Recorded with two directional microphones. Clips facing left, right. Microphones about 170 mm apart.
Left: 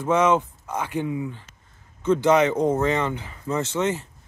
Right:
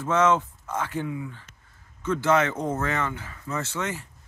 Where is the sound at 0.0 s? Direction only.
15° left (ahead or behind).